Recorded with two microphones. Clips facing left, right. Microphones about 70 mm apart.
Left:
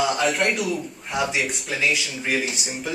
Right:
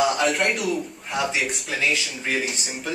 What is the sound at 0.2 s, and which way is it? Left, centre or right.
A man's voice, centre.